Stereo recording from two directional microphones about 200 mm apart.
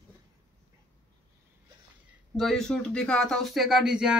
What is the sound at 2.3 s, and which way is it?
Speech, centre (ahead or behind).